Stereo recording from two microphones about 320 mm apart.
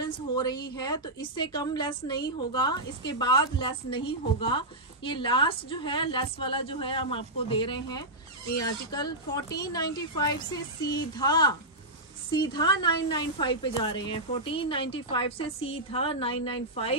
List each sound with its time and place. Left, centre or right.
0.0 s a woman's voice: centre